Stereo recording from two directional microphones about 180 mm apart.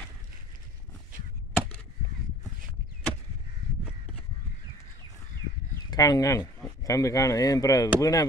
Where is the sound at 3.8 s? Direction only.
5° right (ahead or behind).